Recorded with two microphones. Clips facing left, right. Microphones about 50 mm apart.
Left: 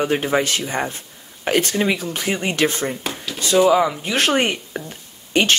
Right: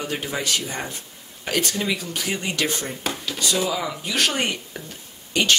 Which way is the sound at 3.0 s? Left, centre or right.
Centre.